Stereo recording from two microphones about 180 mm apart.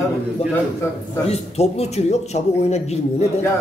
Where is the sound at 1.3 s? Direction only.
35° left (ahead or behind).